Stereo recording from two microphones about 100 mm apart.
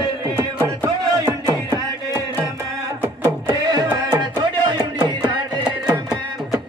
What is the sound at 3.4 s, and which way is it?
Music, 40° right (ahead or behind).